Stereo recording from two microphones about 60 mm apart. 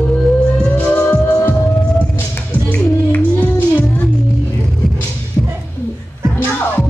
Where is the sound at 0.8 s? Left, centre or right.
Left.